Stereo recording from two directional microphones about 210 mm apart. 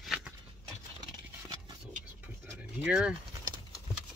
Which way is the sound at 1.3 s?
15° right (ahead or behind).